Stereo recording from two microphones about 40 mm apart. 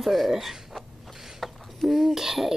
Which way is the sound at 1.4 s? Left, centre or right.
Centre.